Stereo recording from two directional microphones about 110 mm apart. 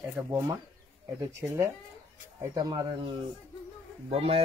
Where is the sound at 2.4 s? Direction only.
35° right (ahead or behind).